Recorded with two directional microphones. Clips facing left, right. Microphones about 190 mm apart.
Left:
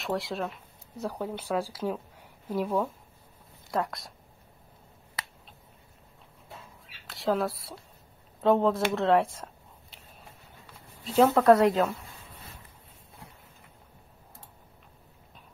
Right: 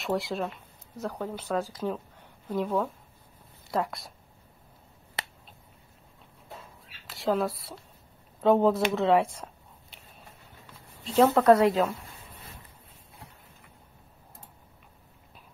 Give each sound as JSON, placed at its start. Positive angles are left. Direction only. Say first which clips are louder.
{"t": 0.0, "sound": "speech", "louder": "right 2 dB", "side_deg": 0}
{"t": 1.0, "sound": "speech", "louder": "even", "side_deg": 10}
{"t": 5.2, "sound": "finger snapping", "louder": "right 3 dB", "side_deg": -25}
{"t": 7.1, "sound": "speech", "louder": "right 1 dB", "side_deg": 0}
{"t": 11.1, "sound": "speech", "louder": "even", "side_deg": 0}